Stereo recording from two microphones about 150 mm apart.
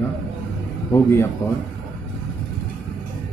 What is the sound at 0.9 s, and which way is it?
Speech, 15° left (ahead or behind).